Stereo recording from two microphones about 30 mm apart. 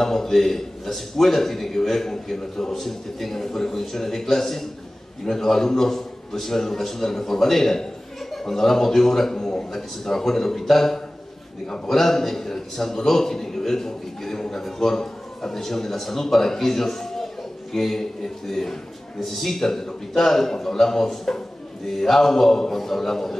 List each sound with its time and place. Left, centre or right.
0.0 s a man's voice: centre
11.6 s a man's voice: left
11.9 s a man's voice: centre